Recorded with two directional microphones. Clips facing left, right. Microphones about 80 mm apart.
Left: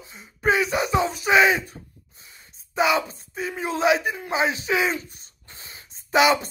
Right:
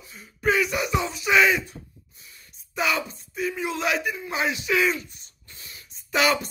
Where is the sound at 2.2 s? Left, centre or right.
Left.